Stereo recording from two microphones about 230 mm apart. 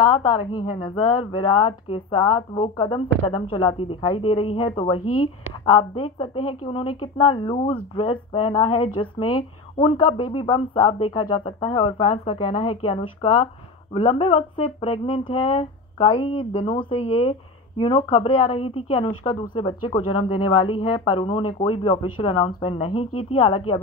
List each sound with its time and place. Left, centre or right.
0.4 s speech: centre
5.0 s speech: left
5.8 s speech: left